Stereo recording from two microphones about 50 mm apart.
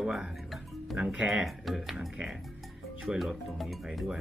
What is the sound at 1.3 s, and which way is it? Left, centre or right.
Speech, centre.